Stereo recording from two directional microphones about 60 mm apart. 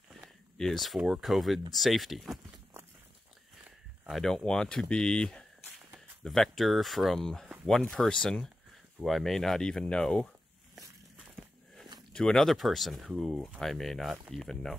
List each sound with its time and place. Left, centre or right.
0.6 s speech: centre
0.9 s speech: centre
4.1 s speech: centre
6.2 s speech: centre
12.1 s speech: centre
12.4 s speech: centre